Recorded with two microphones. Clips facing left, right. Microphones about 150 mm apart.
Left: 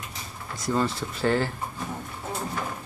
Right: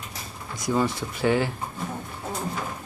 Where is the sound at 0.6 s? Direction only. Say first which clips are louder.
Right 1 dB; 15° right (ahead or behind).